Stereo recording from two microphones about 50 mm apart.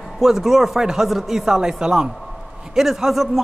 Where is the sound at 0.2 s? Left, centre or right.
Centre.